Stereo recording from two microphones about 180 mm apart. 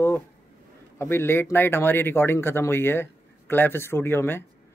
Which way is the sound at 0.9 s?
15° left (ahead or behind).